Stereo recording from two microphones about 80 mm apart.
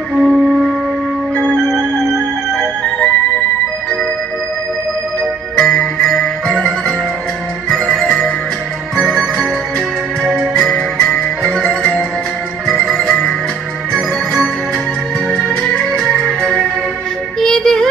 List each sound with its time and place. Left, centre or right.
0.2 s music: centre
1.3 s music: centre
5.6 s jingle bell: centre
7.7 s music: centre
15.6 s music: centre
17.4 s child singing: centre